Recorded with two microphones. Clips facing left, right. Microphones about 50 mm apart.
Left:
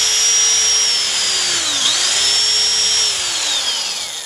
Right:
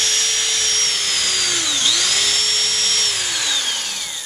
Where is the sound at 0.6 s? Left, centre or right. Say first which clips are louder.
Left 2 dB; left.